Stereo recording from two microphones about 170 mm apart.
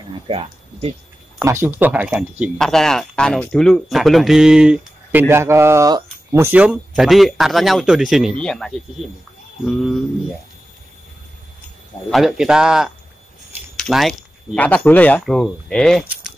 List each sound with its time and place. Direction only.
0.3 s speech: 35° right (ahead or behind)
1.4 s speech: 15° right (ahead or behind); by 8.8 s 5° left (ahead or behind)
12.1 s speech: centre (ahead or behind)